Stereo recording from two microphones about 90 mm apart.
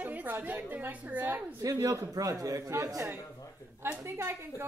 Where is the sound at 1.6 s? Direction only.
40° right (ahead or behind).